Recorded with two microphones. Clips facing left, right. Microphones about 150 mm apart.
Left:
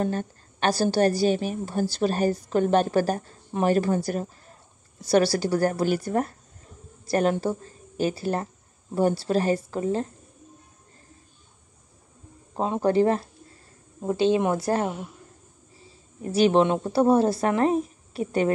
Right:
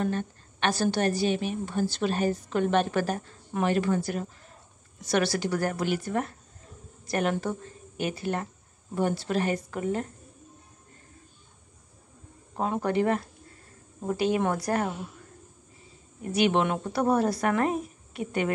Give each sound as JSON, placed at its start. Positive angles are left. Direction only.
{"t": 0.0, "sound": "a woman's voice", "side_deg": 40}
{"t": 12.5, "sound": "a woman's voice", "side_deg": 25}